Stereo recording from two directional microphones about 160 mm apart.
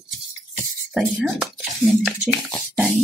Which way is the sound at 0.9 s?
5° right (ahead or behind).